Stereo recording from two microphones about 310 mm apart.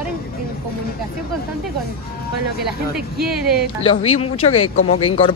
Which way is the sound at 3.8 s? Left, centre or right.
Centre.